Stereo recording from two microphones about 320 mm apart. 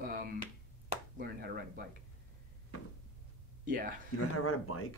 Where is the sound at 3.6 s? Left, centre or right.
Right.